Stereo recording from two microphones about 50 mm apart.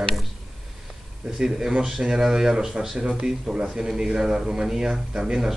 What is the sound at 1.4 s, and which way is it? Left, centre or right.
Speech, centre.